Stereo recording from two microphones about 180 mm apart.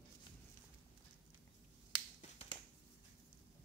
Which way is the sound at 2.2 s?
35° left (ahead or behind).